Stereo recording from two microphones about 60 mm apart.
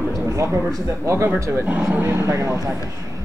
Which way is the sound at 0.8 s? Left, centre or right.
Right.